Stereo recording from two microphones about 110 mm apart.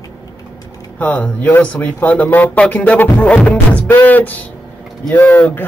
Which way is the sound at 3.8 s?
15° left (ahead or behind).